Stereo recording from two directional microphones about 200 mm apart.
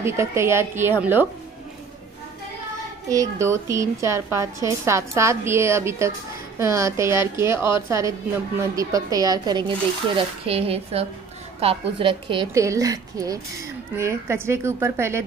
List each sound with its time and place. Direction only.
0.0 s a woman's voice: 15° right (ahead or behind)
3.1 s a woman's voice: 15° right (ahead or behind)